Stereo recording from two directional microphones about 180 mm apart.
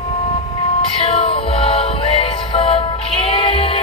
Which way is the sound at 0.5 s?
35° left (ahead or behind).